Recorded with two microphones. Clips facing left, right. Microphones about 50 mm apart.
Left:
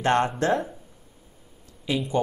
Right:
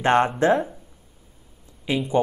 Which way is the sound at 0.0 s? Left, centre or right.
Right.